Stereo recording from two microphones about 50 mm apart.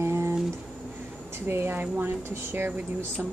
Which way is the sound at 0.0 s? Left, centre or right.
Right.